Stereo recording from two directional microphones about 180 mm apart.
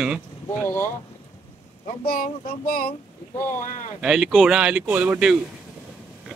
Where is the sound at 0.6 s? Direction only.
10° left (ahead or behind).